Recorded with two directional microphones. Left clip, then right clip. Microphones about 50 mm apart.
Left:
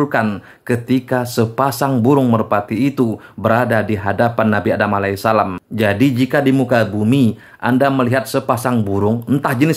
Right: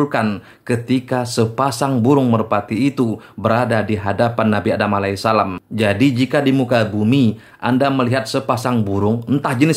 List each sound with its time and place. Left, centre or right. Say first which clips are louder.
0.0 s speech: left 1 dB; left
9.3 s speech: left 2 dB; left